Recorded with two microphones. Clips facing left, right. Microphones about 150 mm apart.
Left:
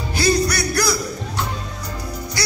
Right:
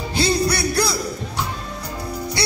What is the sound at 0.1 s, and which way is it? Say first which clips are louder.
Music: left 1 dB; 25° right (ahead or behind).